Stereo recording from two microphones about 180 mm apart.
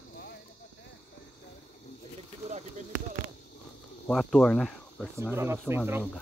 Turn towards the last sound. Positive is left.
turn(degrees=-10)  # may be behind; listen again after turning